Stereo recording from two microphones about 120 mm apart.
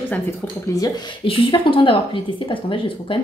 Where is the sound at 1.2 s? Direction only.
50° left (ahead or behind).